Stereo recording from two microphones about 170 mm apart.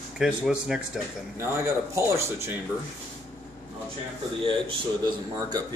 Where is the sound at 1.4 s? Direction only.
15° right (ahead or behind).